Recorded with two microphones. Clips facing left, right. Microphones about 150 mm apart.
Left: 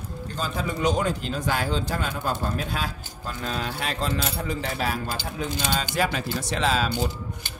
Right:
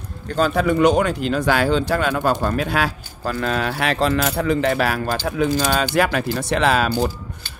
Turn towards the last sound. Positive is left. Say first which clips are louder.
# right 6 dB
turn(degrees=-70)  # may be behind; listen again after turning